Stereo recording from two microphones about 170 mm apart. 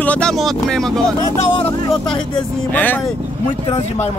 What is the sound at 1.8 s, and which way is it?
Speech, 25° left (ahead or behind).